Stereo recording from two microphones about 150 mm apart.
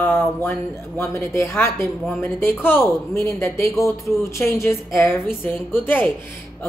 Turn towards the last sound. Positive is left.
turn(degrees=10)  # may be behind; listen again after turning